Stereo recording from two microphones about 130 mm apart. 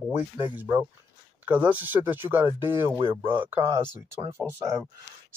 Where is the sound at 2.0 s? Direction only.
15° right (ahead or behind).